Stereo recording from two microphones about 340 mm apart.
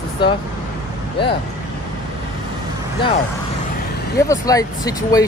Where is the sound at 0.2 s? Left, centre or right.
Centre.